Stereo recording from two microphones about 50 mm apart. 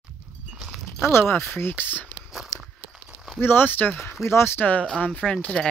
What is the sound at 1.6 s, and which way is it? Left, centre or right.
Speech, left.